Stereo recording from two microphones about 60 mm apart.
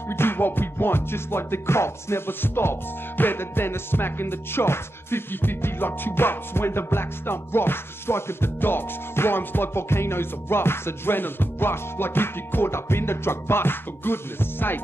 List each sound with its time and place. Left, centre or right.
0.1 s music: left